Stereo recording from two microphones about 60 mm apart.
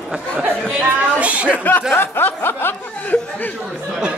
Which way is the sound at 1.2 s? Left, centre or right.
Right.